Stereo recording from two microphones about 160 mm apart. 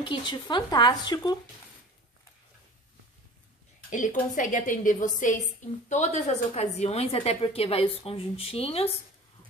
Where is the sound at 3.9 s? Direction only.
50° left (ahead or behind).